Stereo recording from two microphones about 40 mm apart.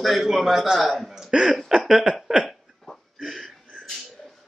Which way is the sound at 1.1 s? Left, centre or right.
Centre.